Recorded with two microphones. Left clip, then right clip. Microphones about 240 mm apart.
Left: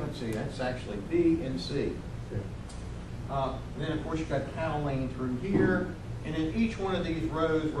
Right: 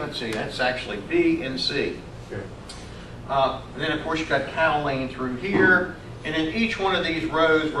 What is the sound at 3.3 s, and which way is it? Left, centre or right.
A man's voice, centre.